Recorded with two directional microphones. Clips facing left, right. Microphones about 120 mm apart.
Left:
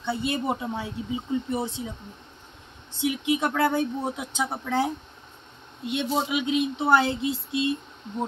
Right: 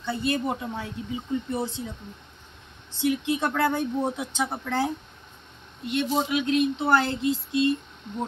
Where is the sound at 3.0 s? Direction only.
10° left (ahead or behind).